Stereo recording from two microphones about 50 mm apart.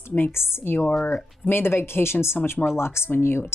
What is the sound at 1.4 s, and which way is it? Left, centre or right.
A woman's voice, left.